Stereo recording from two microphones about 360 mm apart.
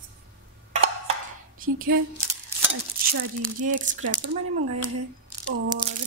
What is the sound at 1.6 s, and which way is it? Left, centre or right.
Speech, right.